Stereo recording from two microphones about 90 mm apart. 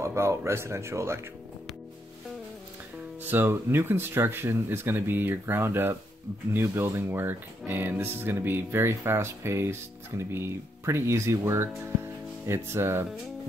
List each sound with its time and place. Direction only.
0.0 s speech: 30° right (ahead or behind)
3.3 s speech: 25° right (ahead or behind)